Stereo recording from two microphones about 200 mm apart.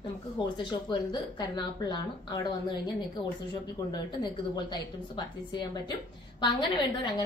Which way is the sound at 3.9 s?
20° left (ahead or behind).